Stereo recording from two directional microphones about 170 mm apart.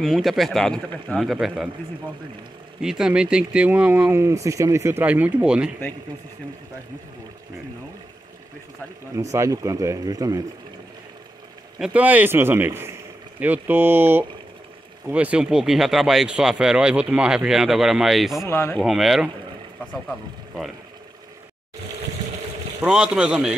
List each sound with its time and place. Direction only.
0.0 s speech: centre (ahead or behind)
2.8 s speech: 5° right (ahead or behind)
9.3 s speech: 20° right (ahead or behind)
11.8 s speech: 10° right (ahead or behind)
18.5 s speech: 15° left (ahead or behind)
18.8 s speech: centre (ahead or behind)
22.8 s speech: 5° right (ahead or behind)